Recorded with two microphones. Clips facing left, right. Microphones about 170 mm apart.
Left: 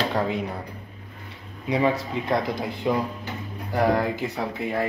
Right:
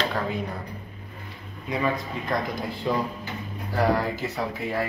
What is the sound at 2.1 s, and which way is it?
A man's voice, 25° left (ahead or behind).